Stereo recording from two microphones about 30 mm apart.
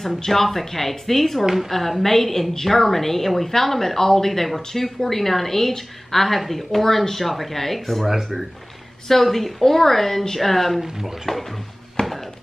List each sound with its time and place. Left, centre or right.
0.2 s a woman's voice: centre
9.1 s a woman's voice: centre
12.0 s music: left